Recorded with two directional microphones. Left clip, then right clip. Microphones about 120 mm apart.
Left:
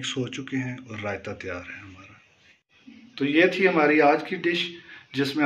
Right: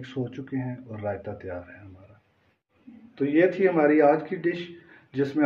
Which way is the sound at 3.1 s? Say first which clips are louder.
Left 1 dB; 15° right (ahead or behind).